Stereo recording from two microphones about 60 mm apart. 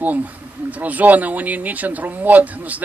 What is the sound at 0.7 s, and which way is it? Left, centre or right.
Speech, right.